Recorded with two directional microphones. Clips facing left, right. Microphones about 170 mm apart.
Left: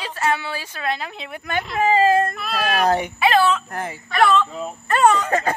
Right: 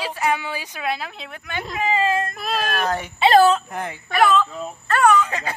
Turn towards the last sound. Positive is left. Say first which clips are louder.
# left 4 dB
turn(degrees=50)  # may be behind; listen again after turning